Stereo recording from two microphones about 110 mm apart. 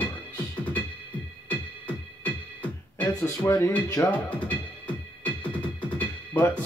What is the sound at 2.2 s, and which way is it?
Music, 15° left (ahead or behind).